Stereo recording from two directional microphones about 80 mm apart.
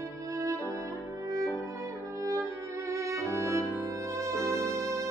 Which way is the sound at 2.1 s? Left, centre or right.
Right.